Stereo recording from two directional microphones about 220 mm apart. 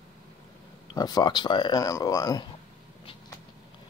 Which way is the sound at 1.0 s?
20° left (ahead or behind).